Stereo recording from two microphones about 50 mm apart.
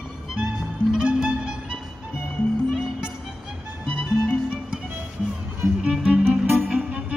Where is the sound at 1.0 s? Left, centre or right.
Centre.